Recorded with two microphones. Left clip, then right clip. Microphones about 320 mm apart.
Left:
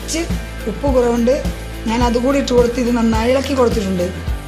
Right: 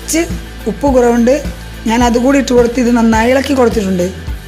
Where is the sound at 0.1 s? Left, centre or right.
Right.